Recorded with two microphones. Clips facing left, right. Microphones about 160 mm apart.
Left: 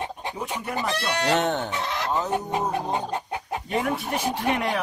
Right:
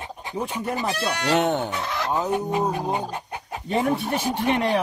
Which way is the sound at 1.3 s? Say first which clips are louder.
Right 3 dB; 10° right (ahead or behind).